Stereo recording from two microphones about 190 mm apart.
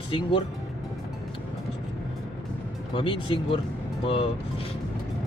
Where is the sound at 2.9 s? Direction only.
25° left (ahead or behind).